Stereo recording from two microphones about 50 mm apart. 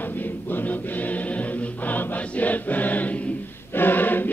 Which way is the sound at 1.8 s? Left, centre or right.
Left.